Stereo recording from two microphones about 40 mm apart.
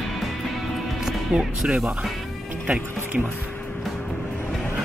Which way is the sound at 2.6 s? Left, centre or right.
Right.